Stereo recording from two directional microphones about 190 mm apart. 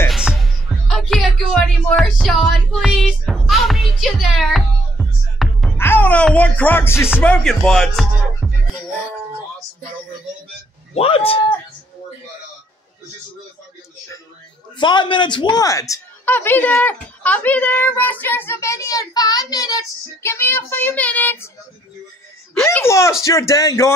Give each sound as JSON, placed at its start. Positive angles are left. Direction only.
{"t": 0.1, "sound": "music", "side_deg": 0}
{"t": 5.8, "sound": "music", "side_deg": 10}
{"t": 7.2, "sound": "speech", "side_deg": 5}
{"t": 11.0, "sound": "a man's voice", "side_deg": 30}
{"t": 14.8, "sound": "a woman's voice", "side_deg": 25}
{"t": 22.7, "sound": "a woman's voice", "side_deg": 15}